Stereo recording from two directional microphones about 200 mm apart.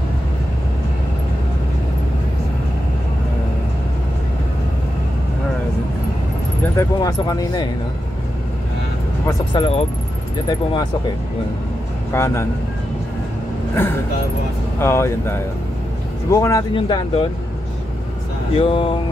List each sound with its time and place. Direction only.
6.6 s speech: 15° left (ahead or behind)
9.5 s speech: 25° left (ahead or behind)
12.1 s speech: 10° left (ahead or behind)
14.8 s speech: 10° left (ahead or behind)
18.6 s speech: 25° left (ahead or behind)